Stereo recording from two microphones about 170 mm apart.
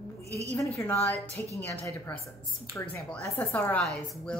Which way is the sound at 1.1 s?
15° right (ahead or behind).